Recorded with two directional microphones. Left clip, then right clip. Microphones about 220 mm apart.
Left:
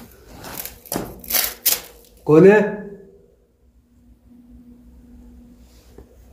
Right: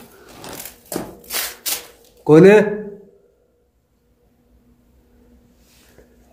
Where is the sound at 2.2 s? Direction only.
30° right (ahead or behind).